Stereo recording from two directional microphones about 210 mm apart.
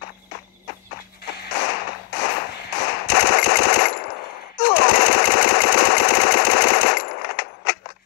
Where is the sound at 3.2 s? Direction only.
70° left (ahead or behind).